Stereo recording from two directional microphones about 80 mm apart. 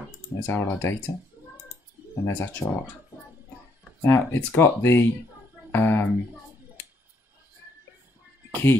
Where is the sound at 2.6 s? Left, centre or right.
Left.